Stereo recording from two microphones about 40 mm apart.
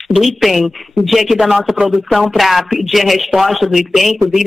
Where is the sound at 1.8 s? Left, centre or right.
Right.